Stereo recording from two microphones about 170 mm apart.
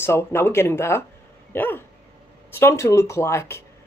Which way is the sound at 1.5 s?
10° left (ahead or behind).